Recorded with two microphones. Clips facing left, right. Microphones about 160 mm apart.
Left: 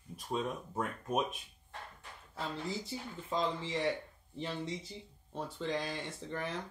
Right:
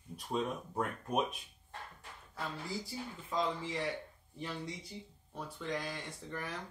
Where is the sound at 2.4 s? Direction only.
20° left (ahead or behind).